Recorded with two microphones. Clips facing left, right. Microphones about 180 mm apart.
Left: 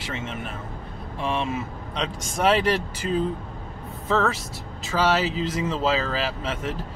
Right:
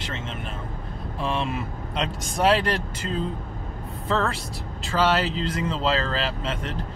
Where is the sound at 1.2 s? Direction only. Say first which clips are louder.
Left 1 dB; centre (ahead or behind).